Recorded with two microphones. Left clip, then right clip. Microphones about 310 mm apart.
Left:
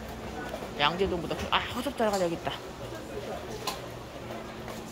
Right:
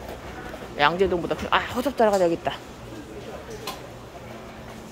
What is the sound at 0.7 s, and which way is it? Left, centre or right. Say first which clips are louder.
A woman's voice: right 7 dB; centre.